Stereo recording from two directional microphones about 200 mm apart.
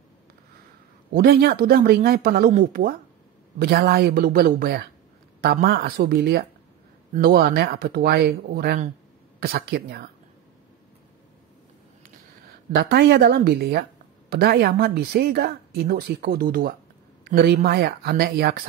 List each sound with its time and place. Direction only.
1.1 s a woman's voice: 50° right (ahead or behind)
12.9 s a woman's voice: 50° right (ahead or behind)